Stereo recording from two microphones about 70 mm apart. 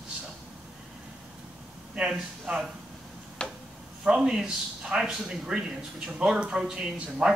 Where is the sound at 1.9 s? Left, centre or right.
Centre.